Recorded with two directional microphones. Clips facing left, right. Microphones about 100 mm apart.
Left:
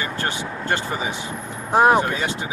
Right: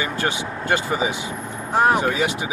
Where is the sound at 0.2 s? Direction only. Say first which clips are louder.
Right 2 dB; 15° right (ahead or behind).